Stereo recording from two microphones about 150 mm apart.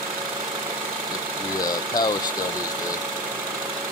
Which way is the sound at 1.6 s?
25° left (ahead or behind).